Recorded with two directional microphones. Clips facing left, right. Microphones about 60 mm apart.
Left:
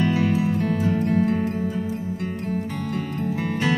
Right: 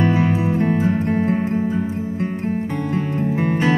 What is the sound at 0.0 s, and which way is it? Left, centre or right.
Music, right.